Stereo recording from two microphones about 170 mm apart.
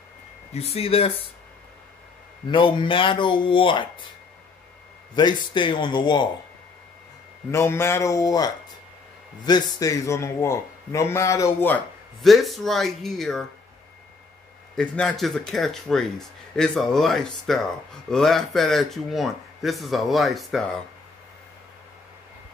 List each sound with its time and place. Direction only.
0.5 s speech: 35° left (ahead or behind)
2.4 s speech: 30° left (ahead or behind)
5.1 s speech: 25° left (ahead or behind)
7.5 s a man's voice: 15° left (ahead or behind)
14.8 s speech: 5° left (ahead or behind)